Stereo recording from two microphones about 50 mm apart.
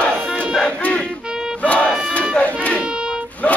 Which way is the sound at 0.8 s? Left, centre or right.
Left.